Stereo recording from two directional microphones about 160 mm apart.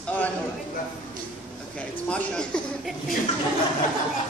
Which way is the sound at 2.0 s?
5° left (ahead or behind).